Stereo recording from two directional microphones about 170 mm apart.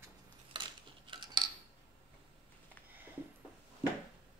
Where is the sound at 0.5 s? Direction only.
30° right (ahead or behind).